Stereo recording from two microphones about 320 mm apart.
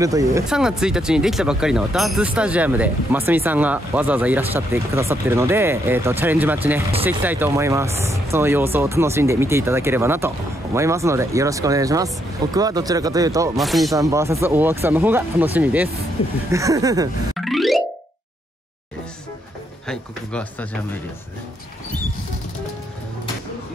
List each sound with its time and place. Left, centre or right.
0.0 s speech: centre
13.6 s speech: centre
16.2 s speech: centre
16.5 s speech: centre
17.4 s music: centre
19.9 s speech: centre